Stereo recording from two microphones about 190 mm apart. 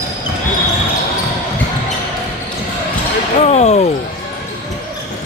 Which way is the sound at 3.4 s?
35° left (ahead or behind).